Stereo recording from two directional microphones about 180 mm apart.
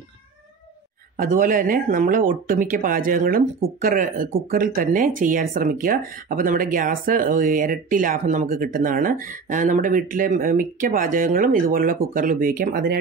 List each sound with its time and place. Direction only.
1.1 s speech: 50° right (ahead or behind)